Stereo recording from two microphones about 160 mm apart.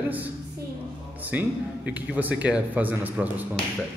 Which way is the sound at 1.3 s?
10° right (ahead or behind).